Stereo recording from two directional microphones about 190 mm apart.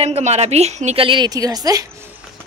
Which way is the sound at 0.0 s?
35° right (ahead or behind).